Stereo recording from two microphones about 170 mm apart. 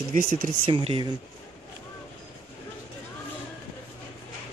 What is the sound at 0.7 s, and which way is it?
Speech, 30° right (ahead or behind).